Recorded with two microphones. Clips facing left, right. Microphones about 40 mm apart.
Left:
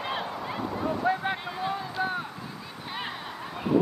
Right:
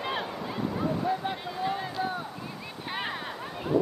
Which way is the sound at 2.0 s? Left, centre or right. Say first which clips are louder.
Left 2 dB; left.